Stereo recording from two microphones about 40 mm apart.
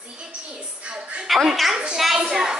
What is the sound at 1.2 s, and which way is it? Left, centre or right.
A woman's voice, centre.